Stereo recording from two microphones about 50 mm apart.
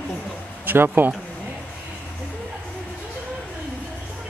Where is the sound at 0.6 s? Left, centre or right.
Right.